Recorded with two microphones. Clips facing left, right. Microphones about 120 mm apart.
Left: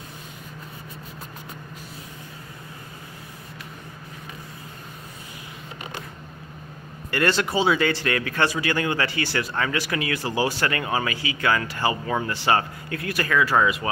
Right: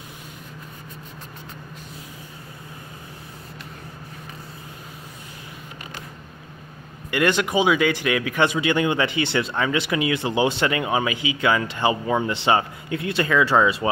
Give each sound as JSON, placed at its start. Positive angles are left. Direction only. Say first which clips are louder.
{"t": 7.1, "sound": "speech", "louder": "right 2 dB", "side_deg": -15}